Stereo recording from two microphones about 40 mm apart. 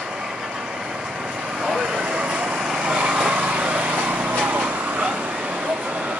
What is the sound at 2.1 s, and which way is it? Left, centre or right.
Vehicle, right.